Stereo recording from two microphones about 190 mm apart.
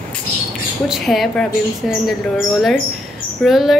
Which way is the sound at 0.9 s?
Centre (ahead or behind).